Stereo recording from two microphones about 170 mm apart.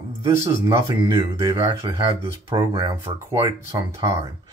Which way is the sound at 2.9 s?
15° right (ahead or behind).